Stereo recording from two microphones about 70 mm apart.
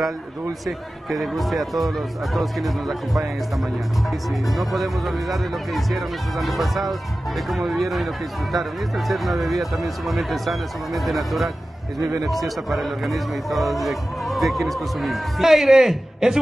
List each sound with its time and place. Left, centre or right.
0.7 s speech: centre
4.5 s speech: centre